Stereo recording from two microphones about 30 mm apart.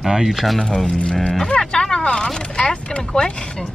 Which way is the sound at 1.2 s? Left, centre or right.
Centre.